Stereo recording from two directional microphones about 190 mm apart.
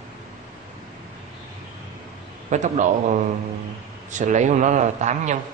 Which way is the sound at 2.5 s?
40° right (ahead or behind).